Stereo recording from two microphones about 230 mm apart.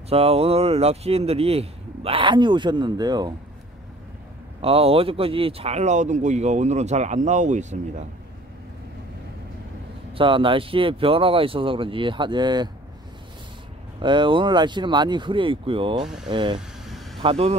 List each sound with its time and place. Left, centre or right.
0.1 s speech: right
4.6 s speech: right
10.1 s speech: right
14.0 s speech: right
16.5 s vehicle: centre
17.2 s speech: right